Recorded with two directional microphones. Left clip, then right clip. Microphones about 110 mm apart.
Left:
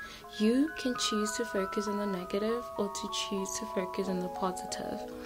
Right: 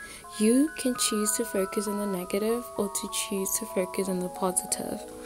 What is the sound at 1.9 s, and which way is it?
Speech, 10° left (ahead or behind).